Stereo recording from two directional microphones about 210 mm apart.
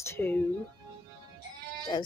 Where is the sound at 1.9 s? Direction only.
20° left (ahead or behind).